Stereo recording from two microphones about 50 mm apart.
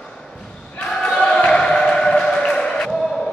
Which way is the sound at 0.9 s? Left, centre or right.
Centre.